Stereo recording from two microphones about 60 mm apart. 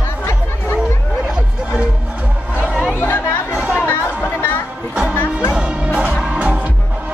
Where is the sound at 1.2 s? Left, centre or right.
Centre.